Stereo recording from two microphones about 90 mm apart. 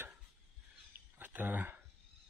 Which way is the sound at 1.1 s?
20° right (ahead or behind).